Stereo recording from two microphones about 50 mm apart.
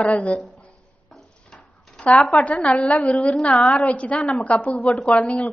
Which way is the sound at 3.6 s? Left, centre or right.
Left.